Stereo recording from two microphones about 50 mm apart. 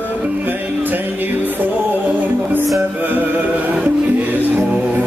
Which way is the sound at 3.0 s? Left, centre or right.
Right.